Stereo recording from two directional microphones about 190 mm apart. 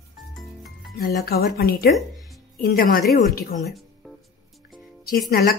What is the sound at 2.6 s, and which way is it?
Speech, 50° left (ahead or behind).